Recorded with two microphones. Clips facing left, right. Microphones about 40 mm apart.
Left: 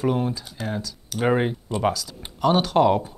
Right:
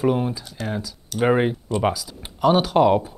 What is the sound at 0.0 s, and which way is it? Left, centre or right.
Speech, centre.